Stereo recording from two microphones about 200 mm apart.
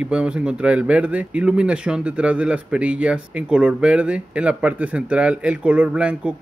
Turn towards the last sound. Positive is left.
turn(degrees=-5)  # may be behind; listen again after turning